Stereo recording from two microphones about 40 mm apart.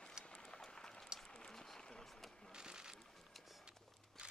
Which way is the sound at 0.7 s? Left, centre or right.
Centre.